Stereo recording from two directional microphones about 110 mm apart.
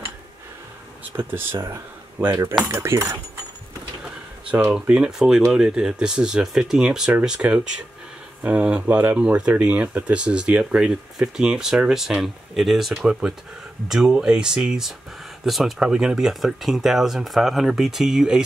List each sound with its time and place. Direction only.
1.1 s speech: 20° right (ahead or behind)
4.5 s speech: 10° right (ahead or behind)